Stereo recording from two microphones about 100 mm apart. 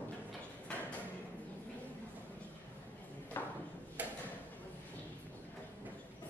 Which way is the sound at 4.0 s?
15° right (ahead or behind).